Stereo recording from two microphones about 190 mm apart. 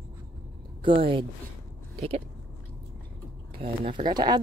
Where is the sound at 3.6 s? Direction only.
30° right (ahead or behind).